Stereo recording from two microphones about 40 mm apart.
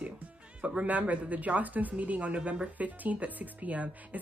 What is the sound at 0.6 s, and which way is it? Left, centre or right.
Speech, right.